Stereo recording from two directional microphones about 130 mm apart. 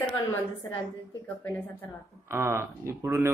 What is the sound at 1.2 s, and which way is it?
Speech, 10° left (ahead or behind).